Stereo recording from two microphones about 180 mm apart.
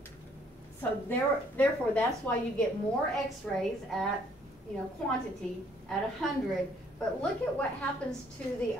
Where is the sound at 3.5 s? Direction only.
10° left (ahead or behind).